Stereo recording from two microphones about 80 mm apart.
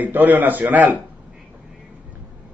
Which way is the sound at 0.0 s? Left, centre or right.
Right.